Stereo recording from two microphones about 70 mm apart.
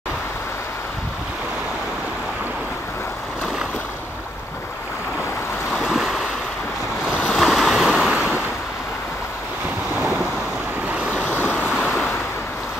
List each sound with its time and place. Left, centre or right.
5.7 s waves: centre
7.3 s waves: centre
8.1 s waves: centre
10.9 s waves: right
11.2 s waves: left